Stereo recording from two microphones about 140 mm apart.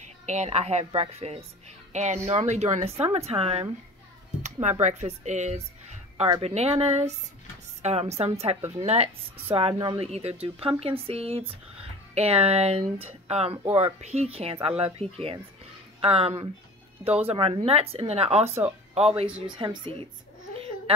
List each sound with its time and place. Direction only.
0.0 s a woman's voice: 55° right (ahead or behind)
16.0 s a woman's voice: 45° right (ahead or behind)
19.4 s speech: 35° right (ahead or behind)